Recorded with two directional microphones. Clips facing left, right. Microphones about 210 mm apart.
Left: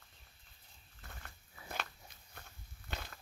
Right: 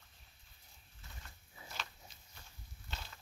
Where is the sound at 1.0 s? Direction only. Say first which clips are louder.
Left 4 dB; 60° left (ahead or behind).